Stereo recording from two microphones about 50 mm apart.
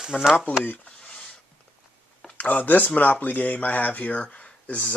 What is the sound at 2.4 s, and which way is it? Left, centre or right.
Speech, left.